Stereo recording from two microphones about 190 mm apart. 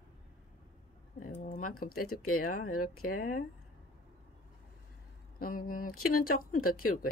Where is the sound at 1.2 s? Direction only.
45° left (ahead or behind).